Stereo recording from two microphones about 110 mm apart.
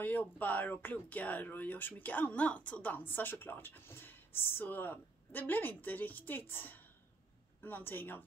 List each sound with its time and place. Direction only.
0.0 s speech: 15° left (ahead or behind)